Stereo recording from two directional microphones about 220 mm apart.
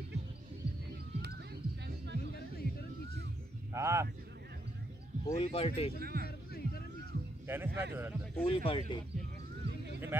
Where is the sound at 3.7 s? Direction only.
10° right (ahead or behind).